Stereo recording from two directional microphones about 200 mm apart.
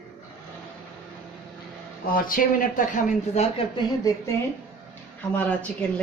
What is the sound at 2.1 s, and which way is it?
Speech, 45° left (ahead or behind).